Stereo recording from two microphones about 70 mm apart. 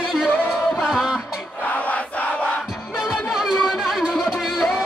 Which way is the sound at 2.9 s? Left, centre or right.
Centre.